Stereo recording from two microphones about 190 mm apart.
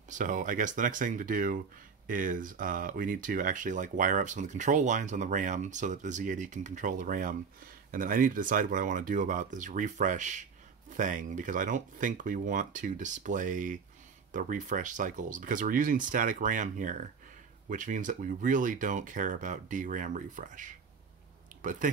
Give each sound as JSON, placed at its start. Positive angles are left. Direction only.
{"t": 0.1, "sound": "speech", "side_deg": -45}